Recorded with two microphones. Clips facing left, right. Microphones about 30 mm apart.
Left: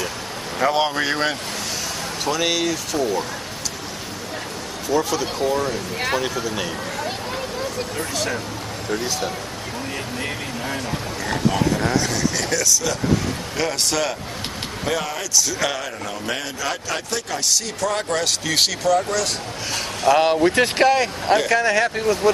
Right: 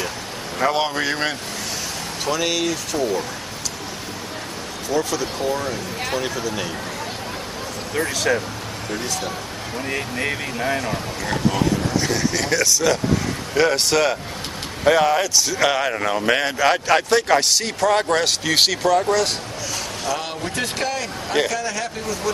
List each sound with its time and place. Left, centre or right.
0.6 s speech: centre
4.8 s speech: centre
10.1 s speech: right
12.0 s speech: centre
12.6 s a man's voice: right
13.6 s speech: centre
16.1 s a man's voice: right
17.7 s speech: right
19.7 s speech: left